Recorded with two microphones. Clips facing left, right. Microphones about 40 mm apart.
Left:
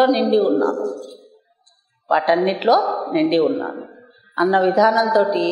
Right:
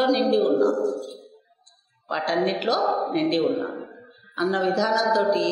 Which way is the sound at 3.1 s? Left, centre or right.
Centre.